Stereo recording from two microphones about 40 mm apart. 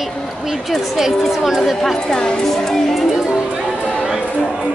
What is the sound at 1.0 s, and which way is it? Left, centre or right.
Speech, centre.